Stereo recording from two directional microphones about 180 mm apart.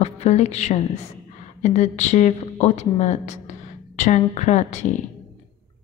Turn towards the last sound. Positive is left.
turn(degrees=40)  # may be behind; listen again after turning